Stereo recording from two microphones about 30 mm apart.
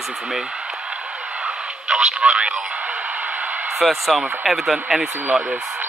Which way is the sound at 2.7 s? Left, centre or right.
Right.